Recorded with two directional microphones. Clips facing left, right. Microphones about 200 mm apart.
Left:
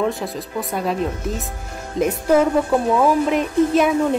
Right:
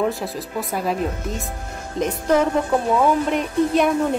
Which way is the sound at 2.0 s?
10° left (ahead or behind).